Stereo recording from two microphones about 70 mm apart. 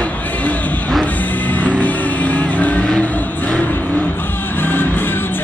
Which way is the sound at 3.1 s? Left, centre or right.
Left.